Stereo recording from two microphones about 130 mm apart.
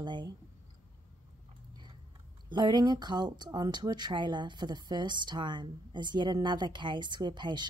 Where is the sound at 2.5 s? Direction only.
35° right (ahead or behind).